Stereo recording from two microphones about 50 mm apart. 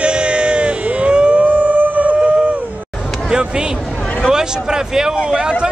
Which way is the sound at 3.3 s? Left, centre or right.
Centre.